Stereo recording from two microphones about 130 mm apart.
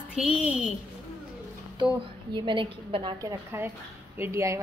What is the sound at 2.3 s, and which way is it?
Speech, 40° right (ahead or behind).